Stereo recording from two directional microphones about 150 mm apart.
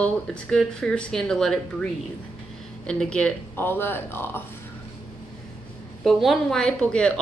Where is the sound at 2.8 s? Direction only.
5° left (ahead or behind).